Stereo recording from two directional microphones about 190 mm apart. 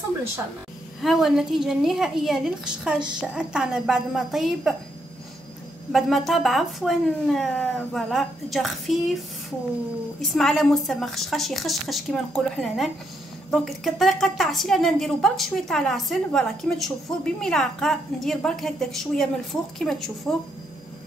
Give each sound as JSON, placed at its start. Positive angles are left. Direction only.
{"t": 1.0, "sound": "a woman's voice", "side_deg": 0}
{"t": 5.9, "sound": "a woman's voice", "side_deg": 0}
{"t": 10.3, "sound": "a woman's voice", "side_deg": 0}